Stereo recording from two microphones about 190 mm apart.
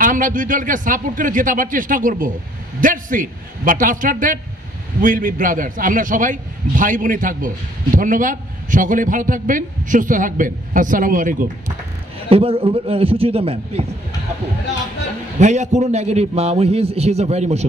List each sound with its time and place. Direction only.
0.0 s a man's voice: 45° right (ahead or behind)
12.3 s a man's voice: 30° right (ahead or behind)
15.3 s a man's voice: 40° right (ahead or behind)